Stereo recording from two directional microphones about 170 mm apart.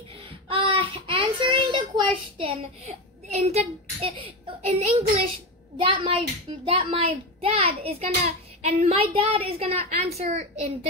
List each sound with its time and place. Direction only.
0.5 s child singing: 30° right (ahead or behind)
3.3 s a child's voice: 40° right (ahead or behind)